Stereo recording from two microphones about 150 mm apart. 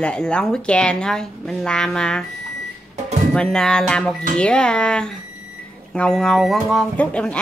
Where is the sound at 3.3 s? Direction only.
5° left (ahead or behind).